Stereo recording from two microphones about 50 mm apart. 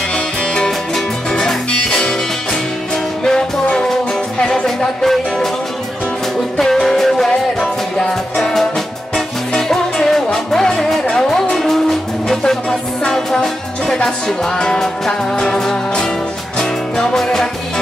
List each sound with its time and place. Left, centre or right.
0.6 s music: centre
3.3 s music: centre
6.6 s music: centre